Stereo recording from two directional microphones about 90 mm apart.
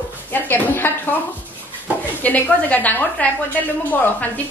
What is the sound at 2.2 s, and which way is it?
A woman's voice, 20° left (ahead or behind).